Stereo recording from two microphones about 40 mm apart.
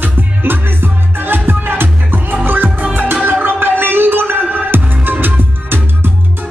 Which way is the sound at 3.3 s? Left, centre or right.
Right.